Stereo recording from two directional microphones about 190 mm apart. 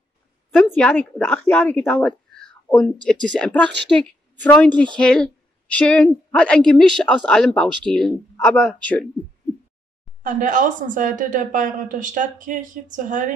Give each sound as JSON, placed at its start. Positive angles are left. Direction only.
{"t": 0.6, "sound": "a woman's voice", "side_deg": 5}
{"t": 10.2, "sound": "a woman's voice", "side_deg": -45}